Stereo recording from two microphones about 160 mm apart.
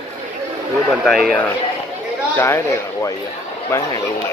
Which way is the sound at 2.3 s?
15° left (ahead or behind).